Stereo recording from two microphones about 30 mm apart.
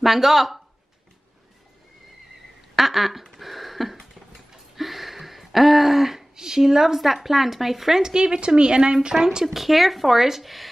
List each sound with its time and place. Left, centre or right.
0.0 s speech: centre
2.7 s speech: centre
3.3 s a sound: centre
6.3 s speech: centre
8.0 s a woman's voice: right
9.1 s a woman's voice: centre
9.5 s speech: centre